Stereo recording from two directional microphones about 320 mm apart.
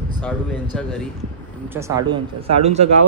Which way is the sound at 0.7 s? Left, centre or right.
Centre.